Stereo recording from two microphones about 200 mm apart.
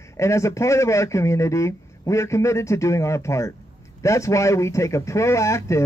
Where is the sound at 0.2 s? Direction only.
15° left (ahead or behind).